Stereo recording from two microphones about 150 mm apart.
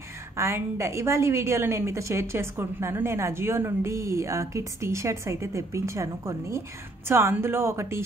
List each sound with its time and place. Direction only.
0.4 s a woman's voice: 20° right (ahead or behind)